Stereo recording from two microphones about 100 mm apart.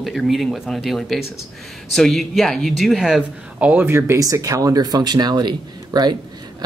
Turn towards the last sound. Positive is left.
turn(degrees=-45)  # may be behind; listen again after turning